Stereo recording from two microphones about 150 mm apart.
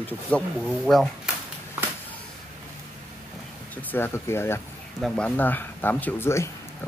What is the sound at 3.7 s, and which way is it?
Speech, 15° left (ahead or behind).